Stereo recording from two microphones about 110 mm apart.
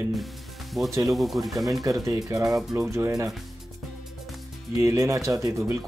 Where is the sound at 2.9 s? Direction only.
30° right (ahead or behind).